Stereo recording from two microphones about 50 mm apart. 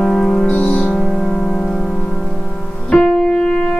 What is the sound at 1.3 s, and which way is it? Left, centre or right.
Music, centre.